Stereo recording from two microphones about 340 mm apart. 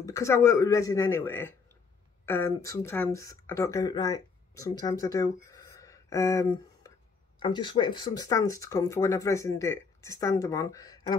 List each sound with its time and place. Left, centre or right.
0.0 s speech: centre